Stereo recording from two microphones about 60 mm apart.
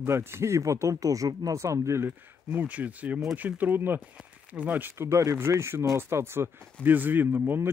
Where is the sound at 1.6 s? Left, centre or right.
Right.